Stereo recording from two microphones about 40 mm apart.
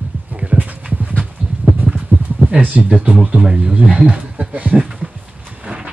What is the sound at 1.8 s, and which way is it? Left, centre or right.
Clip-clop, right.